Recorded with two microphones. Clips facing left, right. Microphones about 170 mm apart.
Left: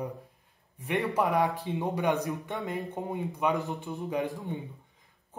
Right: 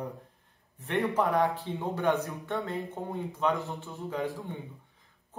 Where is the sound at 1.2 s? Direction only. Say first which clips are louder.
Left 1 dB; 15° left (ahead or behind).